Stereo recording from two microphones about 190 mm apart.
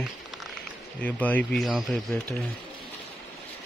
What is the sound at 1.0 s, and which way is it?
Speech, 10° left (ahead or behind).